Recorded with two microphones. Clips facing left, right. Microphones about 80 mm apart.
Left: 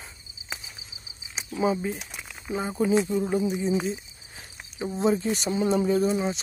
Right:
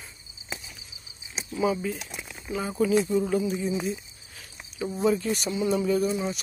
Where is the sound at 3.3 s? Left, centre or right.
Left.